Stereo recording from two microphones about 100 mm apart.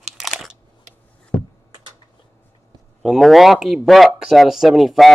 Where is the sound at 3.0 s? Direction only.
Centre (ahead or behind).